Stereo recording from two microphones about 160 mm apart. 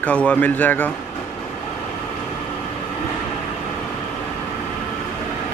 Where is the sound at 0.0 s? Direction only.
10° left (ahead or behind).